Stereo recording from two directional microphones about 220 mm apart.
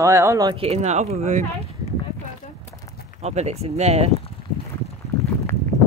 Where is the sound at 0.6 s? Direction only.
30° right (ahead or behind).